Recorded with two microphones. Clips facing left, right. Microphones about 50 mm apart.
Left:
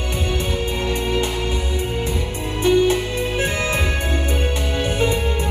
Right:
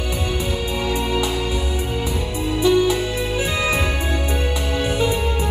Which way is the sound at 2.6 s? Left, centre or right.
Left.